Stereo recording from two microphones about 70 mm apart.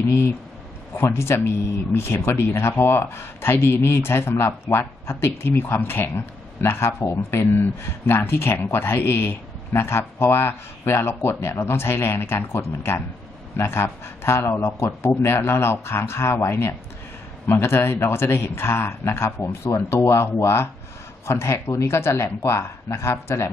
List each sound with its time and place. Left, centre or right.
0.9 s speech: left